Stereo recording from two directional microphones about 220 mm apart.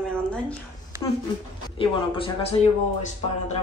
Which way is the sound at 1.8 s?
25° left (ahead or behind).